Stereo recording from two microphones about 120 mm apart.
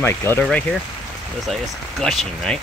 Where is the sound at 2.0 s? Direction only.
5° left (ahead or behind).